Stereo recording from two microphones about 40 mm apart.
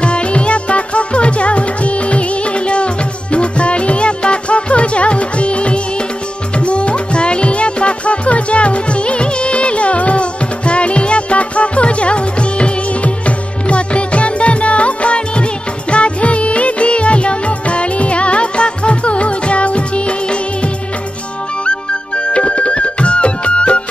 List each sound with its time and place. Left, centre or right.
0.0 s music: left